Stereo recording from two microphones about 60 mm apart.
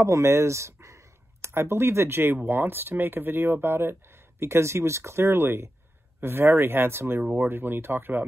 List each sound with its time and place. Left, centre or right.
0.0 s speech: right